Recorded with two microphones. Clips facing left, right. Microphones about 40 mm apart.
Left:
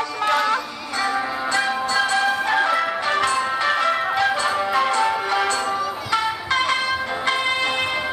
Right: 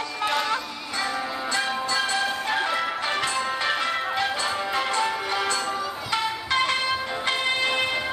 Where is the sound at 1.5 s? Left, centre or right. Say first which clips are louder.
Left 4 dB; left.